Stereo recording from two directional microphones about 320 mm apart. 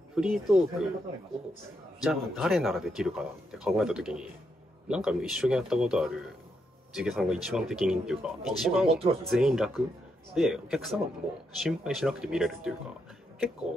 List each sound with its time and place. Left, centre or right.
0.1 s speech: centre
2.0 s speech: centre
8.8 s speech: centre
9.3 s speech: centre